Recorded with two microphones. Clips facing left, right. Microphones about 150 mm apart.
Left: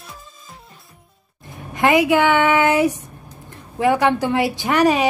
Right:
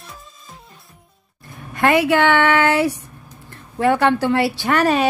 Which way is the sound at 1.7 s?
15° left (ahead or behind).